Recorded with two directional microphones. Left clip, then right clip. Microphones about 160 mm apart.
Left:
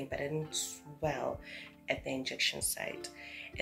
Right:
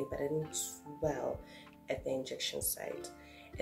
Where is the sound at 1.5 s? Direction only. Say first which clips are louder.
Left 3 dB; 15° right (ahead or behind).